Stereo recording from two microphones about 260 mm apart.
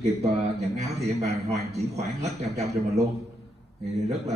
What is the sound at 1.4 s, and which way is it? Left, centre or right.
Speech, right.